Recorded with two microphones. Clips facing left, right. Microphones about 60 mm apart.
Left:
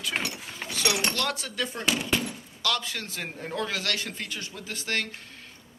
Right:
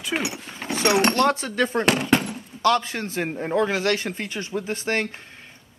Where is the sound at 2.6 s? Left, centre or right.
Right.